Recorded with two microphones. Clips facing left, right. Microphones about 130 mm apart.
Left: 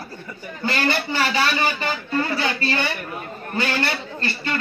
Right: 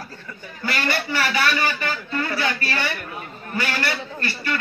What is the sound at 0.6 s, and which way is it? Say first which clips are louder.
A man's voice: left 2 dB; 30° left (ahead or behind).